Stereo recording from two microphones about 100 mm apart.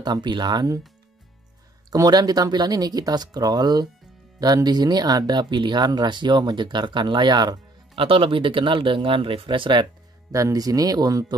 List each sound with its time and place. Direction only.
0.0 s speech: 50° right (ahead or behind)
1.9 s speech: 40° right (ahead or behind)
8.0 s speech: 60° right (ahead or behind)
10.3 s speech: 35° right (ahead or behind)